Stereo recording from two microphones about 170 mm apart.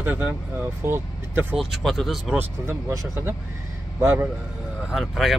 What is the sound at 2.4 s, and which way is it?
Speech, 15° right (ahead or behind).